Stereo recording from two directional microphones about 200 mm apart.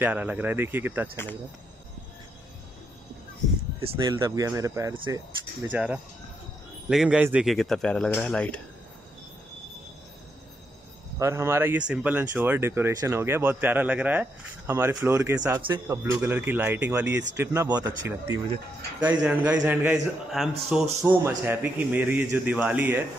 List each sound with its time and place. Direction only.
0.0 s speech: 10° right (ahead or behind)
4.0 s speech: 20° right (ahead or behind)
5.7 s speech: 5° right (ahead or behind)
11.1 s speech: 15° right (ahead or behind)
21.0 s speech: 15° right (ahead or behind)